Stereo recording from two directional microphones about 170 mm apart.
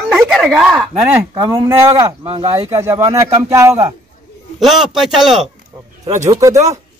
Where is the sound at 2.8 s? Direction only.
20° right (ahead or behind).